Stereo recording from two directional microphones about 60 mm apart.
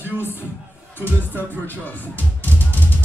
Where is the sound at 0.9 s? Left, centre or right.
Left.